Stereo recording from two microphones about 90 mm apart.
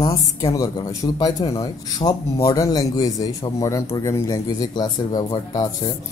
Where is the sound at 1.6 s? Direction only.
45° left (ahead or behind).